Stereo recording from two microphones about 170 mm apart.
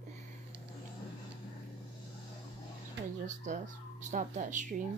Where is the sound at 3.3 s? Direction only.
45° right (ahead or behind).